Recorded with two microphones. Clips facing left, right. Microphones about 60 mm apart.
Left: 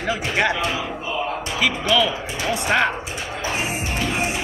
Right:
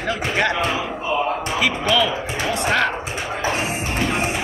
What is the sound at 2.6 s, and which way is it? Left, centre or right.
Speech, centre.